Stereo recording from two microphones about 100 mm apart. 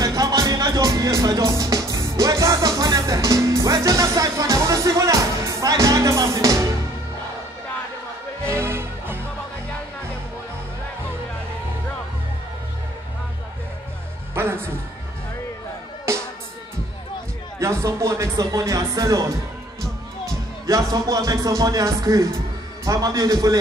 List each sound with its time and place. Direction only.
0.0 s music: 35° right (ahead or behind)
8.5 s music: 25° right (ahead or behind)
14.3 s music: 25° right (ahead or behind)
16.1 s music: 30° right (ahead or behind)
17.6 s speech: 30° right (ahead or behind)
20.6 s speech: 35° right (ahead or behind)